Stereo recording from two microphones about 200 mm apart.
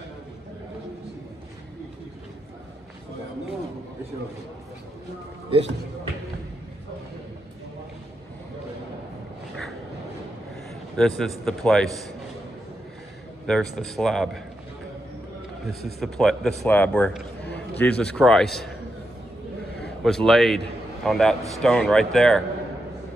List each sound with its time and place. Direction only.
5.5 s speech: 25° right (ahead or behind)
11.0 s a man's voice: centre (ahead or behind)
13.5 s a man's voice: 5° left (ahead or behind)
16.0 s a man's voice: centre (ahead or behind)
17.4 s a sound: 55° left (ahead or behind)
17.7 s a man's voice: 5° left (ahead or behind)
20.0 s a man's voice: centre (ahead or behind)